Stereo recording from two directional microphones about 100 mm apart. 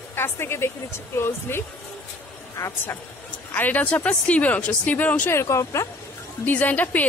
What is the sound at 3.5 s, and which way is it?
Speech, 15° left (ahead or behind).